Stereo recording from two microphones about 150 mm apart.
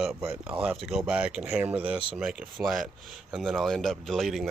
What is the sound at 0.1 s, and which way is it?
Speech, 15° right (ahead or behind).